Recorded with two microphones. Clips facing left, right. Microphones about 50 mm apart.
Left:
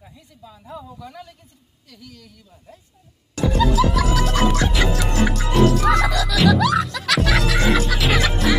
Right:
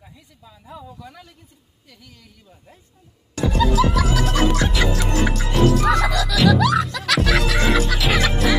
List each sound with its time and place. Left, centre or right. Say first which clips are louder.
1.9 s a woman's voice: left 4 dB; centre
3.3 s music: even; centre